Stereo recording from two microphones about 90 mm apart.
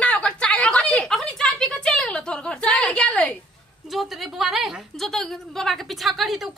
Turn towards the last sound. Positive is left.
turn(degrees=0)  # may be behind; listen again after turning